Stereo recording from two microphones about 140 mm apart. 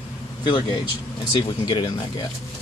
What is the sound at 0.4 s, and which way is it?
A man's voice, 35° left (ahead or behind).